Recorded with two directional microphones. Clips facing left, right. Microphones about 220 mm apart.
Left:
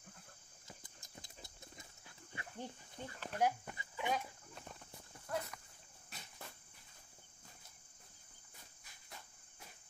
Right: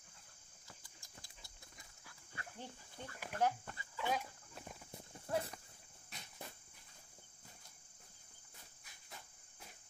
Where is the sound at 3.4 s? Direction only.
15° left (ahead or behind).